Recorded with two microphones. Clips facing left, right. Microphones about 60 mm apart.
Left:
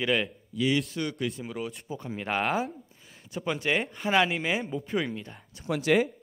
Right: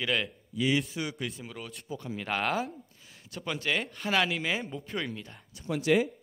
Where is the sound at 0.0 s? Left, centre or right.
Centre.